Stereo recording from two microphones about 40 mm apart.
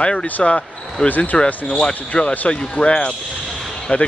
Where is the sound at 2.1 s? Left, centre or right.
Centre.